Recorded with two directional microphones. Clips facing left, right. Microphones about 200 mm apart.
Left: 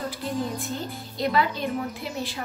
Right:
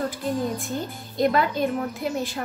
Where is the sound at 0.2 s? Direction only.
Centre (ahead or behind).